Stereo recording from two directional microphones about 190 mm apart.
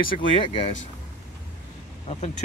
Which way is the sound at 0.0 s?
25° left (ahead or behind).